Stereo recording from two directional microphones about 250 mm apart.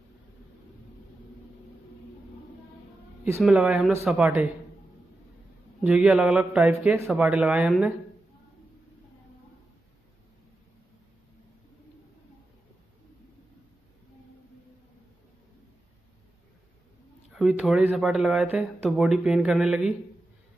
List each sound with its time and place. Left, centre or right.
3.3 s speech: centre
5.9 s speech: centre
17.3 s speech: centre